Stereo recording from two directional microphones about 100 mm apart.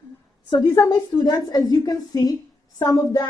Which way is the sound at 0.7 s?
35° left (ahead or behind).